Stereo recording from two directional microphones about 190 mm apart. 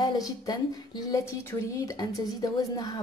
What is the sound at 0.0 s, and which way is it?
A woman's voice, 20° left (ahead or behind).